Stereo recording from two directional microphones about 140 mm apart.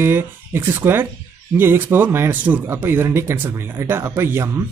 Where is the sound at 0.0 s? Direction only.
15° right (ahead or behind).